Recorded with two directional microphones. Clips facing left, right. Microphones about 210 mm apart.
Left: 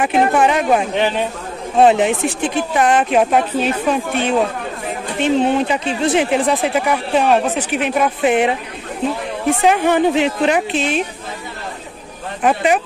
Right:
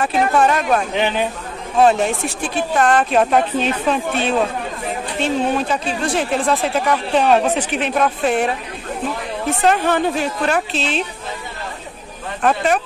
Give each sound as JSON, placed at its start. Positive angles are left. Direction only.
{"t": 0.0, "sound": "speech", "side_deg": 15}
{"t": 9.6, "sound": "speech", "side_deg": 15}
{"t": 12.4, "sound": "speech", "side_deg": 15}